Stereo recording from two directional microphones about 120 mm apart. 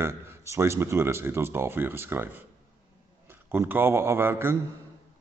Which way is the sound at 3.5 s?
20° right (ahead or behind).